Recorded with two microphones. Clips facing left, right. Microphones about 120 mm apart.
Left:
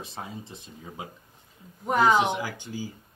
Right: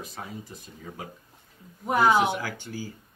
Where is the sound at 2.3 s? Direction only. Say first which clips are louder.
Left 1 dB; 15° left (ahead or behind).